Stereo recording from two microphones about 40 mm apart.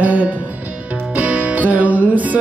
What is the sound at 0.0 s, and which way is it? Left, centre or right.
Music, right.